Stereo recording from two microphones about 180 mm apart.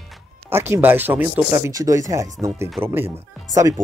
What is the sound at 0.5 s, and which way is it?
Speech, 15° right (ahead or behind).